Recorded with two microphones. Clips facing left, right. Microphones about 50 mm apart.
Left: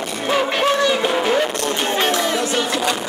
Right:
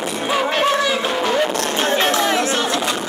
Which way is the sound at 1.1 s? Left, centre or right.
Centre.